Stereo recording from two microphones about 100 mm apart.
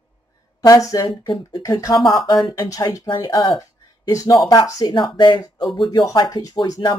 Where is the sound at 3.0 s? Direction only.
50° left (ahead or behind).